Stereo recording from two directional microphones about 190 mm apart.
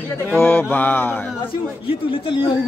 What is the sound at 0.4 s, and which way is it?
Speech, 10° left (ahead or behind).